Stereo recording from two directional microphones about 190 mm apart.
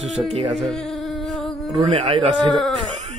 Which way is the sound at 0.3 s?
35° right (ahead or behind).